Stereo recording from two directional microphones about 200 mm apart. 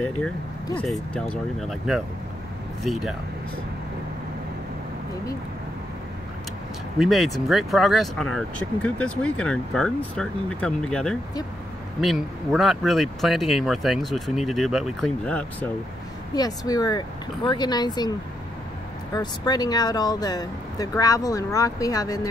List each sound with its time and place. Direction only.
0.7 s speech: 5° left (ahead or behind)
7.0 s speech: centre (ahead or behind)
16.3 s speech: 20° left (ahead or behind)
19.1 s speech: 20° left (ahead or behind)